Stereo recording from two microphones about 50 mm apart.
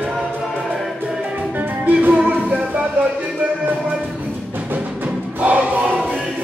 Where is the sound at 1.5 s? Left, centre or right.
Right.